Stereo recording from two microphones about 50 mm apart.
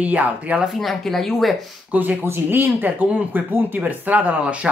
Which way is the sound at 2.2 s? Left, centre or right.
Right.